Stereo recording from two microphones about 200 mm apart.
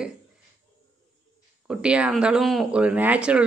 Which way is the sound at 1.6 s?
5° right (ahead or behind).